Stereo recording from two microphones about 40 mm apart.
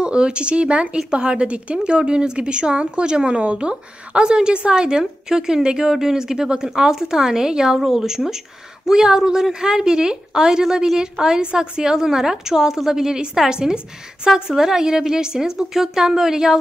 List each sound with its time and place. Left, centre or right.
0.0 s a woman's voice: right